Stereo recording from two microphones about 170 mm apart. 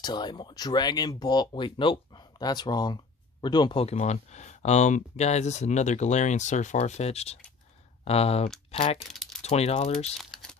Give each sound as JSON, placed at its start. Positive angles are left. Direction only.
{"t": 0.0, "sound": "speech", "side_deg": 25}
{"t": 10.1, "sound": "typing", "side_deg": 0}